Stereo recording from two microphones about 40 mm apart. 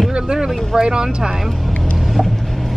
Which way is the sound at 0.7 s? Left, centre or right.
Centre.